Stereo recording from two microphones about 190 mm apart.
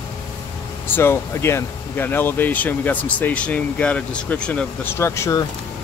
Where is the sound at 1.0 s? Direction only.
15° left (ahead or behind).